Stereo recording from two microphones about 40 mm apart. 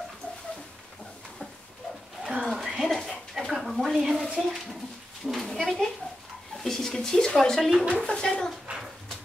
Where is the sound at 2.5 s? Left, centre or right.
Centre.